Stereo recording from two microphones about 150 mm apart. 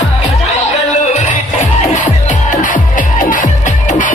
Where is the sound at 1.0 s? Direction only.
50° left (ahead or behind).